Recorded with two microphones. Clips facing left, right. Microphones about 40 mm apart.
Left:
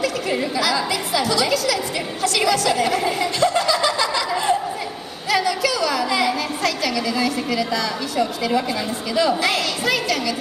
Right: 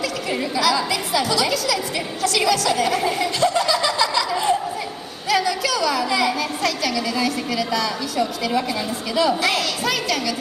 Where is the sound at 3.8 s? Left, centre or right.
Centre.